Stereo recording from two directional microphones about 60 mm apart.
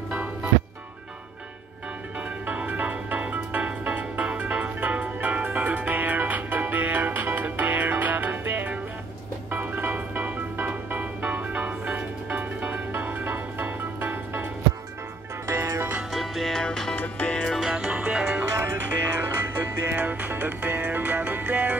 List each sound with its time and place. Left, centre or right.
0.1 s music: right
2.4 s music: right
15.4 s music: right
16.1 s music: centre
16.9 s music: left
17.3 s music: centre
17.7 s music: centre
18.6 s music: right
19.9 s music: right